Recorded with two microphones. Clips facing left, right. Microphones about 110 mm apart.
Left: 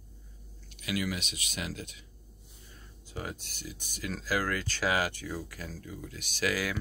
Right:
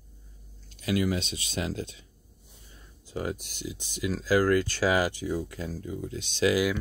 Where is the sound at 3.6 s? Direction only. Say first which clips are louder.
Right 7 dB; 45° left (ahead or behind).